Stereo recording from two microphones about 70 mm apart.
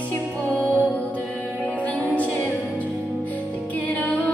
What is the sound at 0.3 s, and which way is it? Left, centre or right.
Music, centre.